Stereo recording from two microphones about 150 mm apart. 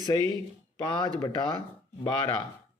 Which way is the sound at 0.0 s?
25° left (ahead or behind).